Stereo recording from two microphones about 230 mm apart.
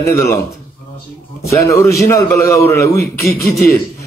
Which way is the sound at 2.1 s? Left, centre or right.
Centre.